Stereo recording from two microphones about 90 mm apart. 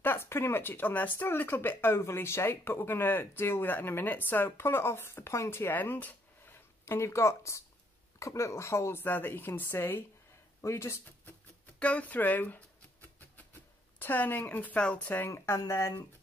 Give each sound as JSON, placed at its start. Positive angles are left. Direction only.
{"t": 0.0, "sound": "speech", "side_deg": 25}
{"t": 11.8, "sound": "speech", "side_deg": 15}
{"t": 15.3, "sound": "speech", "side_deg": 30}